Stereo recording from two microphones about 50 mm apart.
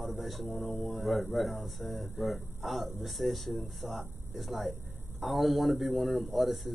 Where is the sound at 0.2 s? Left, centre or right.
Centre.